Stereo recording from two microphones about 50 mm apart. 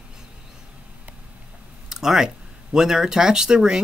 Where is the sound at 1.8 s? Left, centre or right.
Centre.